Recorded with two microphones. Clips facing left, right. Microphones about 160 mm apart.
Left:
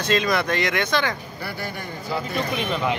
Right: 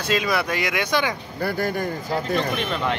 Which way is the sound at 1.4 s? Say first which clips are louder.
Right 9 dB; 45° right (ahead or behind).